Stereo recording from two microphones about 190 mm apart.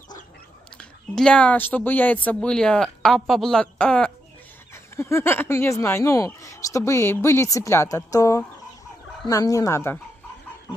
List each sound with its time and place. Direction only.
0.7 s speech: 5° left (ahead or behind)